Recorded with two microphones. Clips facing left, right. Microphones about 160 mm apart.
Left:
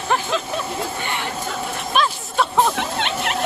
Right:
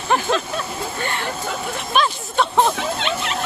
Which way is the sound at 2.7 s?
60° left (ahead or behind).